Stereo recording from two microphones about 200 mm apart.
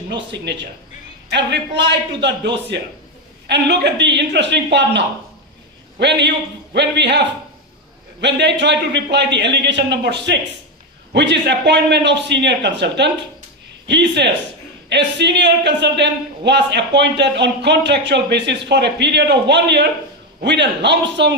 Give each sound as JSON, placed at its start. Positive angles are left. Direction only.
{"t": 0.3, "sound": "speech", "side_deg": -60}
{"t": 8.2, "sound": "speech", "side_deg": -60}